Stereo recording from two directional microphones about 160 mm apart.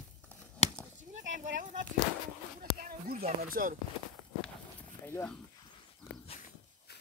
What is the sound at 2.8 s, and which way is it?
Speech, 65° right (ahead or behind).